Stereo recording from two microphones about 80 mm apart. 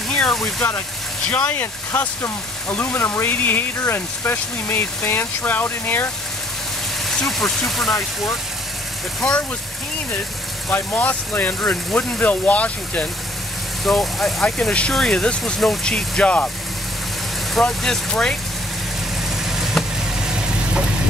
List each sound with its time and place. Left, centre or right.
0.1 s speech: centre
2.7 s speech: left
7.1 s speech: centre
10.7 s speech: left
13.8 s speech: centre
14.4 s speech: centre
17.6 s speech: centre
19.4 s vehicle: centre